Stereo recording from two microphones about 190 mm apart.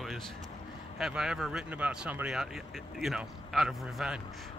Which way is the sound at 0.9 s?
5° right (ahead or behind).